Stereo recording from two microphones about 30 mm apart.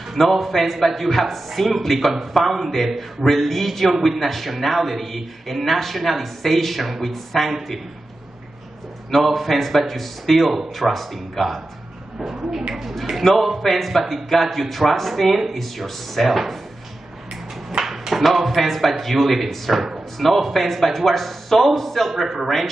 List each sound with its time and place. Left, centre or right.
0.1 s a man's voice: centre
9.1 s a man's voice: centre
12.2 s speech: right
13.2 s a man's voice: centre
17.6 s a sound: centre
18.2 s a man's voice: centre